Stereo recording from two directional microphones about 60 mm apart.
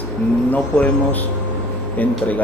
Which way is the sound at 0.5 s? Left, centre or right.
Left.